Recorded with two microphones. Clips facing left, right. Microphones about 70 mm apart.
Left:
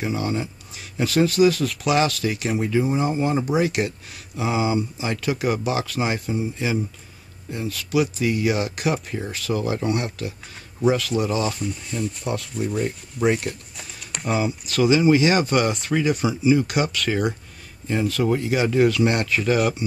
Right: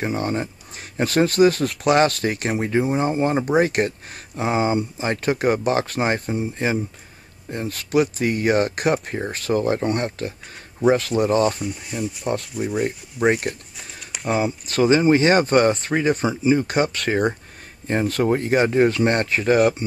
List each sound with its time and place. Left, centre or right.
0.0 s speech: right
11.9 s speech: centre
12.8 s speech: right
14.1 s speech: centre
14.7 s speech: right
16.8 s speech: right
17.1 s speech: right